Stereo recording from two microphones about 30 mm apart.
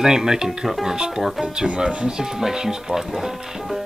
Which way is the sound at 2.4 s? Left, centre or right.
Centre.